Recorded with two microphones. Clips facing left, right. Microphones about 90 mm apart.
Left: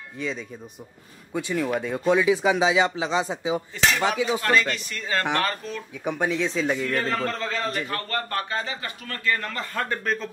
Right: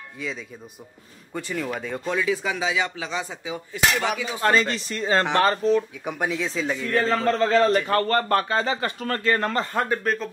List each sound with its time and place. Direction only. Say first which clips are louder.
0.2 s speech: left 2 dB; centre (ahead or behind)
2.0 s a man's voice: left 5 dB; 15° left (ahead or behind)
3.7 s speech: right 3 dB; 5° right (ahead or behind)
4.4 s speech: right 2 dB; 25° right (ahead or behind)
6.0 s speech: left 2 dB; 5° right (ahead or behind)
6.9 s a man's voice: right 4 dB; 30° right (ahead or behind); by 8.5 s 50° right (ahead or behind)
8.5 s speech: right 6 dB; 80° right
9.0 s a man's voice: right 4 dB; 40° right (ahead or behind)
10.0 s speech: right 2 dB; centre (ahead or behind)